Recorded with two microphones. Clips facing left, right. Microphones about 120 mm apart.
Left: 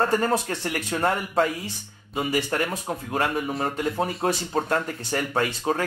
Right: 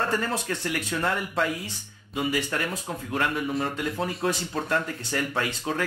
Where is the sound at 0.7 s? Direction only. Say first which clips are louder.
Left 3 dB; 45° left (ahead or behind).